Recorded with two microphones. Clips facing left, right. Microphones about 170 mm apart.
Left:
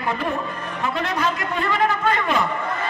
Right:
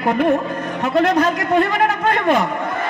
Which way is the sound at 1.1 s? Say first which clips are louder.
Right 8 dB; 50° right (ahead or behind).